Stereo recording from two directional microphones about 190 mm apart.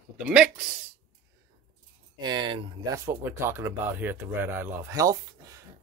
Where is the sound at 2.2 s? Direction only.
25° right (ahead or behind).